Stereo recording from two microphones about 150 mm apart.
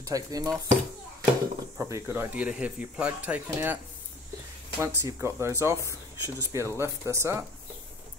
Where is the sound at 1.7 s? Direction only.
20° right (ahead or behind).